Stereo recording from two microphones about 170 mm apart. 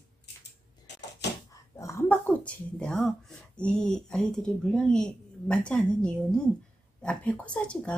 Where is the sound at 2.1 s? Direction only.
5° left (ahead or behind).